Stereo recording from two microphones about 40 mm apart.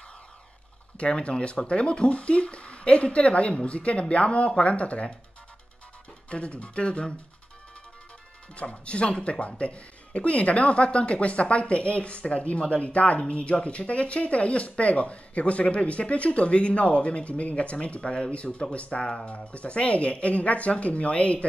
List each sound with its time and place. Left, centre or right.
0.9 s speech: left
6.3 s speech: left
8.5 s speech: left